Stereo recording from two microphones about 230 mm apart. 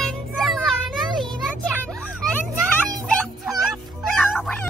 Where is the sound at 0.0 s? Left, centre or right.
Centre.